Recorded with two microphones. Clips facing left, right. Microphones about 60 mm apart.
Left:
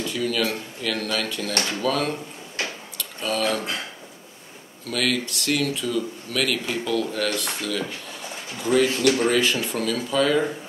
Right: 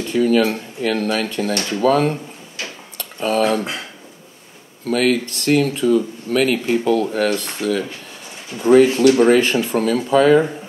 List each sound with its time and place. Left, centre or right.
0.0 s speech: right
4.8 s speech: right